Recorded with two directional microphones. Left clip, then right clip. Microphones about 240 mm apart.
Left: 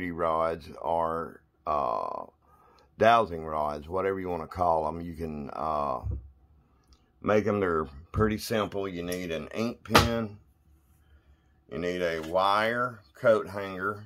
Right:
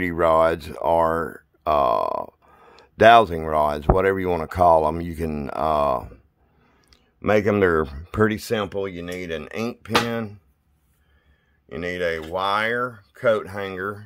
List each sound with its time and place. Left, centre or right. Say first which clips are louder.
0.0 s speech: right 10 dB; right
11.7 s speech: right 5 dB; right